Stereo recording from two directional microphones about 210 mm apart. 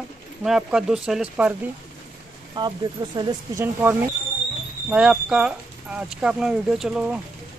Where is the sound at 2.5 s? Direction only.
20° right (ahead or behind).